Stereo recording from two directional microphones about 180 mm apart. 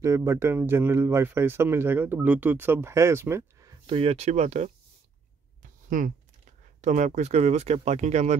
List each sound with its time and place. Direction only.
0.0 s speech: 15° right (ahead or behind)
3.9 s speech: 35° right (ahead or behind)
5.6 s a sound: 45° right (ahead or behind)
6.8 s speech: 40° right (ahead or behind)